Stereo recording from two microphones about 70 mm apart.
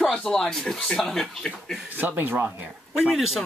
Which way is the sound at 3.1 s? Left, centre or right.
Centre.